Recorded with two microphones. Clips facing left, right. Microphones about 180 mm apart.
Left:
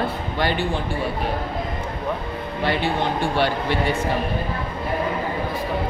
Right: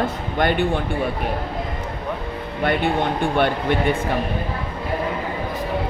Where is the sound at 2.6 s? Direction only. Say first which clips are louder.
Right 2 dB; 55° right (ahead or behind).